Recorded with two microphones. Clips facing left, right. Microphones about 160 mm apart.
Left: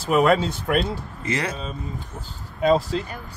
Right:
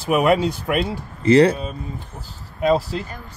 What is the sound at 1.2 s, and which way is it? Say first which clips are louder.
Speech: right 14 dB; 30° right (ahead or behind).